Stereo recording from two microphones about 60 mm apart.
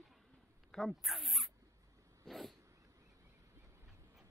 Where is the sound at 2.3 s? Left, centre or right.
Centre.